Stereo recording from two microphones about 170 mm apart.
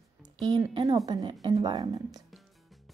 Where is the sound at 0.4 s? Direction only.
25° right (ahead or behind).